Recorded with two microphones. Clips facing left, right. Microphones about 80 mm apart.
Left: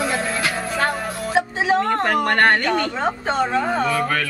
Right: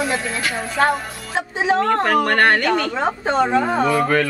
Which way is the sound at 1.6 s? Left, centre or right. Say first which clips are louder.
Right 4 dB; centre.